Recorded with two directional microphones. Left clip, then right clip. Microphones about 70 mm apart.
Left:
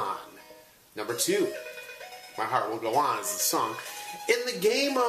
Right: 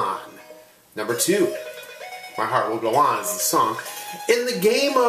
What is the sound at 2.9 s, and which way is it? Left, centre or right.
Speech, left.